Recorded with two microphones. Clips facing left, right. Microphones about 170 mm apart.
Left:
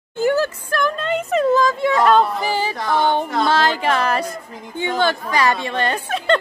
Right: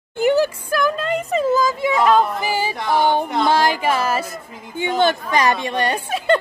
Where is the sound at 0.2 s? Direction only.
15° right (ahead or behind).